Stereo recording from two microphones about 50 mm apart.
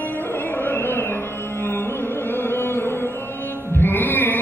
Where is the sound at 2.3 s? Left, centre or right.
Left.